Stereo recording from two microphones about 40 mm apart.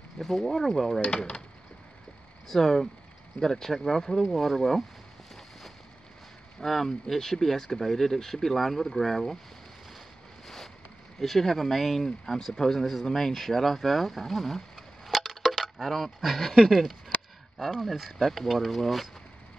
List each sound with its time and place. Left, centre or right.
0.2 s speech: centre
1.0 s speech: left
2.4 s speech: centre
6.6 s speech: centre
10.4 s boat: centre
11.1 s speech: centre
15.0 s a sound: centre
17.6 s speech: centre
18.2 s speech: centre
18.5 s speech: centre